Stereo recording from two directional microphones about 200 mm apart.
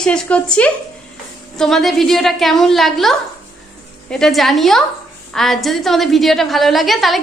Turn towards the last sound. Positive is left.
turn(degrees=0)  # may be behind; listen again after turning